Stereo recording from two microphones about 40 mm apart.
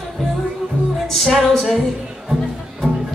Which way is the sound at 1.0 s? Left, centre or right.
Centre.